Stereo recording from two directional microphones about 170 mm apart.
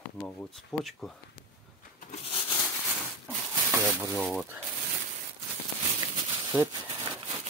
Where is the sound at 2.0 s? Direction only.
45° left (ahead or behind).